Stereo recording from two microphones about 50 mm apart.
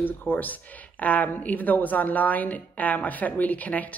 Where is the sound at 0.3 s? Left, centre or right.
Left.